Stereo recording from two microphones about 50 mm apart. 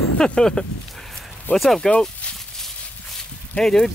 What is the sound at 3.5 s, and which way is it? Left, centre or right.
Speech, centre.